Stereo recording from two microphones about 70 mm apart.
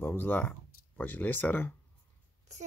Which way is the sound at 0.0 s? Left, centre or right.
Left.